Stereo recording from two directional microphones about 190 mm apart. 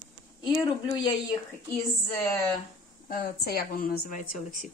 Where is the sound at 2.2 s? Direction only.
10° left (ahead or behind).